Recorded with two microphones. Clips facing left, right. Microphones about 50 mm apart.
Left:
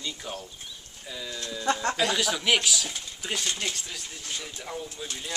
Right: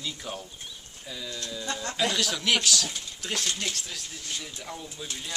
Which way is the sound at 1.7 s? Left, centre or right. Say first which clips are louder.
Left 9 dB; left.